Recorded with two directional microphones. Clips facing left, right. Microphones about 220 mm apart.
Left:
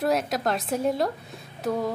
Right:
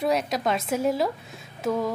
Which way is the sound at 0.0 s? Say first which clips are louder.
Even; centre (ahead or behind).